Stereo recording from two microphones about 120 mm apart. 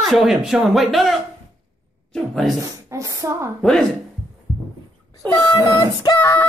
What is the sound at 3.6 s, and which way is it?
Speech, 5° left (ahead or behind).